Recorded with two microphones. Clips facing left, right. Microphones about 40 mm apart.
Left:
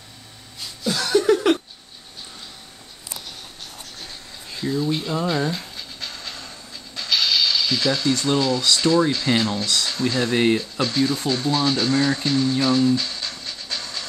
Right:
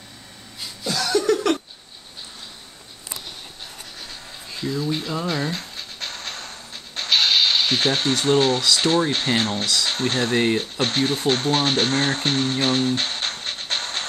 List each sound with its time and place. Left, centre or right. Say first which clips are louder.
0.8 s chuckle: left 2 dB; centre
4.6 s speech: left 2 dB; centre
5.2 s speech: left 4 dB; centre
5.6 s music: right 1 dB; right
8.7 s speech: left 1 dB; right